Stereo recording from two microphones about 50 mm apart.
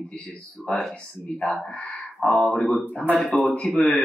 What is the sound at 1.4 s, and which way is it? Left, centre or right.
Speech, centre.